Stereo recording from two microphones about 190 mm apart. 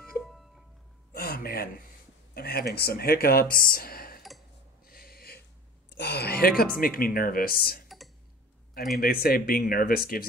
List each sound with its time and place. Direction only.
0.2 s music: centre (ahead or behind)
1.1 s a sound: 50° left (ahead or behind)
2.3 s speech: 55° left (ahead or behind)
4.8 s a sound: 50° left (ahead or behind)
5.9 s speech: 60° left (ahead or behind)
8.9 s speech: 50° left (ahead or behind)